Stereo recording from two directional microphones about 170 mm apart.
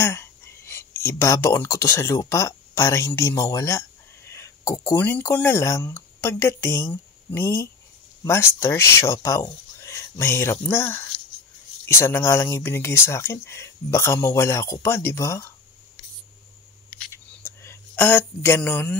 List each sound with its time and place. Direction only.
0.0 s speech: 15° left (ahead or behind)
17.4 s speech: 15° left (ahead or behind)